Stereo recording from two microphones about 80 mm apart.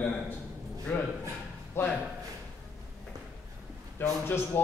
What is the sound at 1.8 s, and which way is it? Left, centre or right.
Speech, left.